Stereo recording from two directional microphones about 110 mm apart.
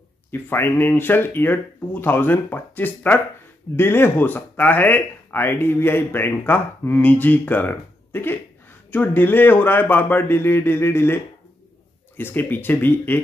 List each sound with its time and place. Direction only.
0.3 s speech: 20° left (ahead or behind)
12.2 s speech: 20° left (ahead or behind)